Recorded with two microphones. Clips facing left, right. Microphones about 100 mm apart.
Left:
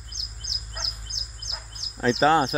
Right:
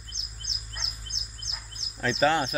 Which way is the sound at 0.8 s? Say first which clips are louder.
Left 4 dB; 60° left (ahead or behind).